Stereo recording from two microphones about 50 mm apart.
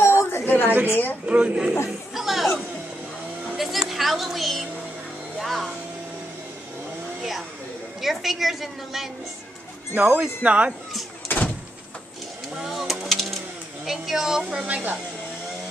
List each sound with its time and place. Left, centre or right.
0.0 s a sound: left
0.5 s a woman's voice: left
1.2 s speech: right
1.9 s chatter: centre
3.5 s a sound: centre
3.9 s a woman's voice: centre
8.0 s a woman's voice: centre
9.9 s speech: right
11.2 s vehicle: left
12.6 s a sound: centre
13.8 s a woman's voice: centre
14.7 s speech: right